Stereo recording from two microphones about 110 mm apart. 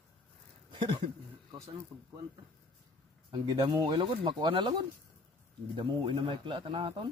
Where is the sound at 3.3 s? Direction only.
45° right (ahead or behind).